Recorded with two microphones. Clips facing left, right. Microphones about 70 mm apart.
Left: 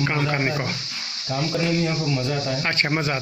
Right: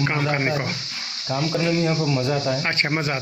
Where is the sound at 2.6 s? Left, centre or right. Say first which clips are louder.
Even; right.